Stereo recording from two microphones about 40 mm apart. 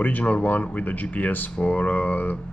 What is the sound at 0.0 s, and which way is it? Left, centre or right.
Speech, left.